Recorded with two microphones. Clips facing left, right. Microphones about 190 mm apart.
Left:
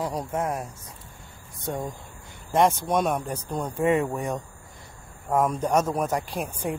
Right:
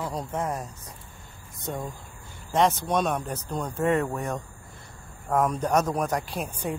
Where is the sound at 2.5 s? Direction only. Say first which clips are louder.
Left 2 dB; 10° left (ahead or behind).